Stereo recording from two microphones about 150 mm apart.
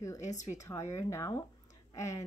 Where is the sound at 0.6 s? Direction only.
20° left (ahead or behind).